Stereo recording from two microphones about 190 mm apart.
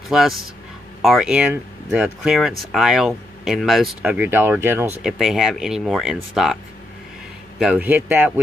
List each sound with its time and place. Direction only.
0.1 s speech: centre (ahead or behind)
5.2 s a man's voice: centre (ahead or behind)